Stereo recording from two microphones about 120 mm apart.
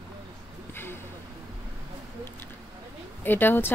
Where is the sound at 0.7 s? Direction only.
20° left (ahead or behind).